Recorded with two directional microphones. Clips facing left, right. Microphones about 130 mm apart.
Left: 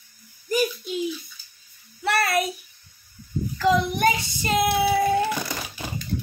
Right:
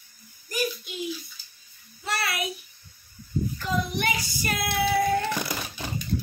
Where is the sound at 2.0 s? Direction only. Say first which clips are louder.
Left 8 dB; 50° left (ahead or behind).